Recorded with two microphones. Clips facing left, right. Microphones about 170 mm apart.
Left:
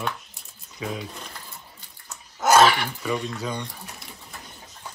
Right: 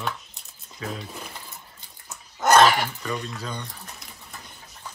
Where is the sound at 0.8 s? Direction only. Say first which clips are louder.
Left 2 dB; 10° left (ahead or behind).